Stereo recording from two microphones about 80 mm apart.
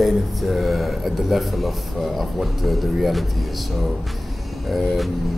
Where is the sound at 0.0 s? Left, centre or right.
Centre.